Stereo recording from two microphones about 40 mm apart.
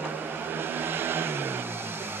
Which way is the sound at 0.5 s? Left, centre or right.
Right.